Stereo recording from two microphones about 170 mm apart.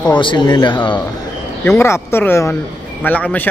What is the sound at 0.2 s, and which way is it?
Speech, 30° left (ahead or behind).